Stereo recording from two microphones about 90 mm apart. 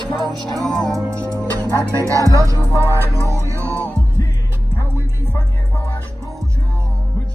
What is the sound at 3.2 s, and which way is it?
Music, 35° right (ahead or behind).